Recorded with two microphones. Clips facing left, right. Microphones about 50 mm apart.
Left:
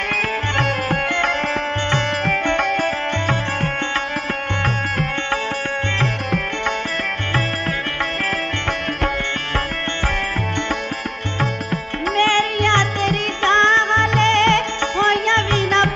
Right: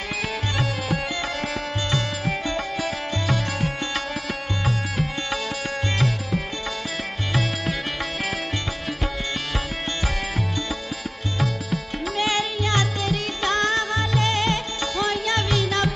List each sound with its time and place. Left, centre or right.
0.6 s music: left
2.8 s music: left
11.3 s music: left